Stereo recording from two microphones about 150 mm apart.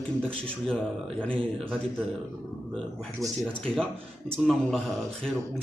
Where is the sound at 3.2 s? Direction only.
20° right (ahead or behind).